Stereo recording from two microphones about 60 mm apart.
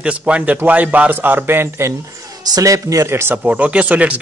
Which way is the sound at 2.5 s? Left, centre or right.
Right.